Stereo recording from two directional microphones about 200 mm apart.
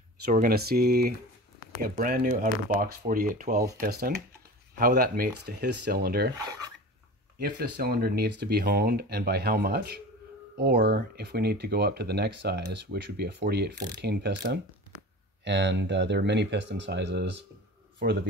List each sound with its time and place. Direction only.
0.3 s speech: 45° right (ahead or behind)
7.3 s speech: 50° right (ahead or behind)